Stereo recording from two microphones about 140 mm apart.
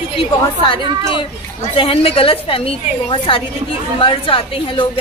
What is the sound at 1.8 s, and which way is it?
A woman's voice, 40° left (ahead or behind).